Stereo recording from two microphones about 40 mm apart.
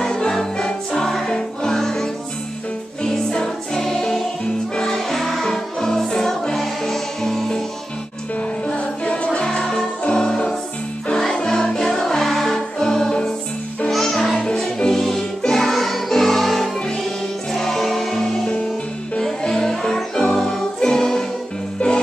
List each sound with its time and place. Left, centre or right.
0.0 s music: centre
8.6 s music: left
13.8 s music: centre
14.4 s music: centre